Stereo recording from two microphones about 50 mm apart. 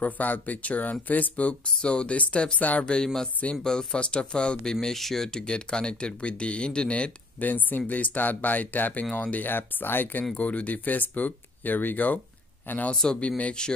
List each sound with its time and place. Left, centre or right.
0.0 s speech: left
4.8 s speech: centre; by 7.1 s left
7.3 s speech: left
10.3 s speech: left
12.9 s speech: centre